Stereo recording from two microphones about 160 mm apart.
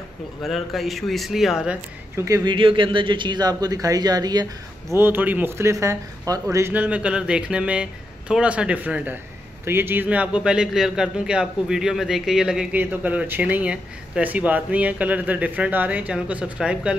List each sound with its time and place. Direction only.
0.4 s speech: centre (ahead or behind)
2.1 s speech: 20° right (ahead or behind)
4.9 s a man's voice: 15° right (ahead or behind)